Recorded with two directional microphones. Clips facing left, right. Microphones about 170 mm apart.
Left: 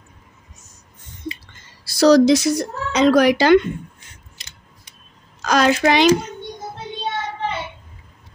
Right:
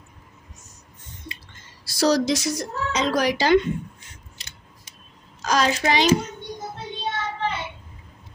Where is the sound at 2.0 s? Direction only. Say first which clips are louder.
Left 8 dB; 70° left (ahead or behind).